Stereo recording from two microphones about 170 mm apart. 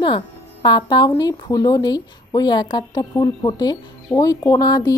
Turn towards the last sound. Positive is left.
turn(degrees=25)  # may be behind; listen again after turning